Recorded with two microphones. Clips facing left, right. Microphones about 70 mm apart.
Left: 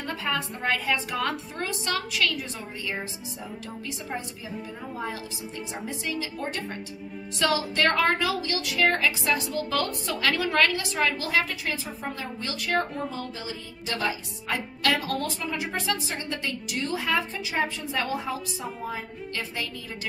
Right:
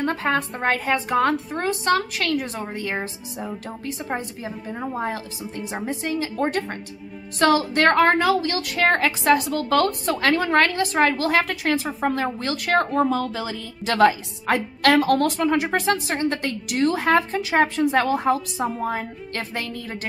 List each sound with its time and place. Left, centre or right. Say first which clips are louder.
0.0 s a woman's voice: right 7 dB; right
3.8 s a woman's voice: right 6 dB; right
14.4 s a woman's voice: right 8 dB; right